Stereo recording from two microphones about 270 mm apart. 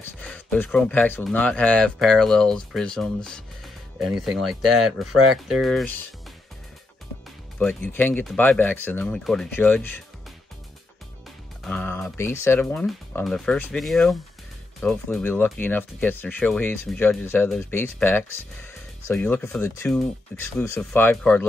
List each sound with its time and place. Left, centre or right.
0.2 s speech: centre
7.5 s speech: centre
11.6 s speech: centre